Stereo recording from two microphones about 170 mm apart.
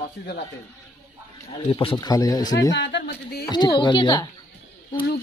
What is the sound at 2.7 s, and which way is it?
Speech, 90° left.